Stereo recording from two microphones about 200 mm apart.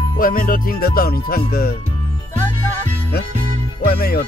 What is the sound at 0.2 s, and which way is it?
Music, 45° left (ahead or behind).